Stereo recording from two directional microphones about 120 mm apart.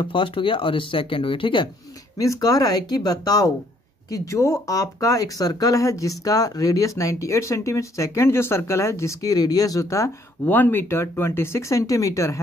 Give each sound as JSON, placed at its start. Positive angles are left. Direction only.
{"t": 0.0, "sound": "speech", "side_deg": 45}
{"t": 2.1, "sound": "speech", "side_deg": 25}
{"t": 10.4, "sound": "speech", "side_deg": 15}